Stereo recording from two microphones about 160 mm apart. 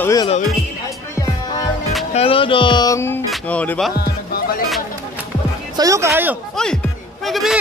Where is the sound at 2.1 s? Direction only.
35° left (ahead or behind); by 3.9 s 5° left (ahead or behind).